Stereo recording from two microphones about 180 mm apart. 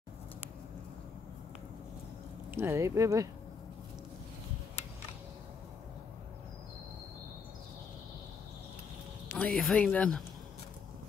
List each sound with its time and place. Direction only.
2.5 s speech: 15° right (ahead or behind)
9.3 s speech: 5° left (ahead or behind)